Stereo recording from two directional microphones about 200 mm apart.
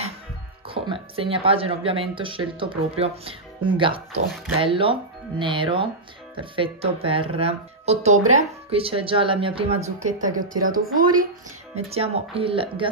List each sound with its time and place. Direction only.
0.7 s a woman's voice: 25° right (ahead or behind); by 10.8 s 45° right (ahead or behind)
11.7 s speech: 30° right (ahead or behind)